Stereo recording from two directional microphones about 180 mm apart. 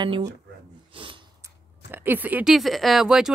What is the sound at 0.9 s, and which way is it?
Snort, 30° right (ahead or behind).